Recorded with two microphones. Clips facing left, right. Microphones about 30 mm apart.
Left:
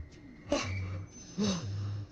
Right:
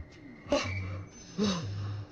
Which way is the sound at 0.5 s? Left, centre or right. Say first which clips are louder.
Right 3 dB; centre.